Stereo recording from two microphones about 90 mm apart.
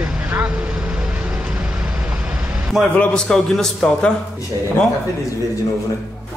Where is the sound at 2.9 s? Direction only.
5° left (ahead or behind).